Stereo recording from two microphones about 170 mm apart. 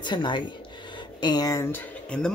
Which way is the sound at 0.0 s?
25° left (ahead or behind).